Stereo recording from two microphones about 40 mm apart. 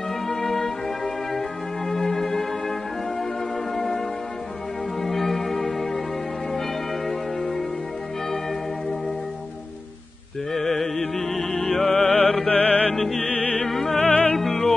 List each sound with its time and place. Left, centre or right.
0.3 s music: centre
3.7 s music: centre
5.0 s music: centre
7.1 s music: centre
10.5 s music: centre
12.0 s music: left
12.9 s music: centre
13.3 s music: left
13.7 s music: centre
13.9 s music: left
14.3 s music: centre